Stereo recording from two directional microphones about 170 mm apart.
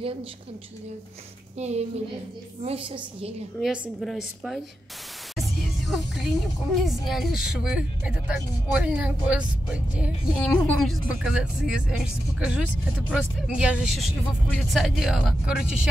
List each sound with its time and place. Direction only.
1.6 s a woman's voice: 40° right (ahead or behind)
3.5 s speech: 5° right (ahead or behind)
5.3 s music: centre (ahead or behind)
7.1 s speech: centre (ahead or behind)